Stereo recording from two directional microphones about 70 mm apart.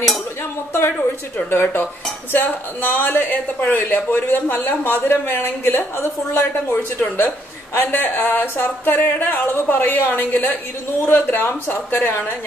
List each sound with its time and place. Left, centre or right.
0.4 s speech: left